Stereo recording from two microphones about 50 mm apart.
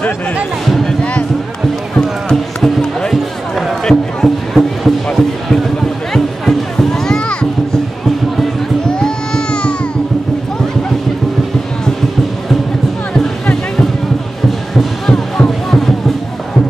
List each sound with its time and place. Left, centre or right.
0.7 s music: centre
2.0 s music: centre
8.8 s music: centre
15.0 s music: centre